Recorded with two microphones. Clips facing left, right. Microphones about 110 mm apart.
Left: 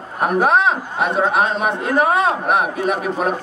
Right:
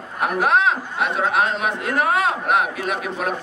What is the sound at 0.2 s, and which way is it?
A man's voice, 35° left (ahead or behind).